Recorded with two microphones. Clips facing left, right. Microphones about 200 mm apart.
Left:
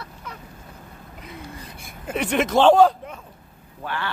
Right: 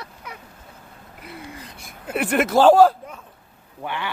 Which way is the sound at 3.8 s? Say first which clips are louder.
Even; 15° right (ahead or behind).